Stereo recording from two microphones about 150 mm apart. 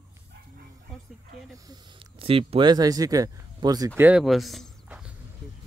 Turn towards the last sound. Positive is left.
turn(degrees=0)  # may be behind; listen again after turning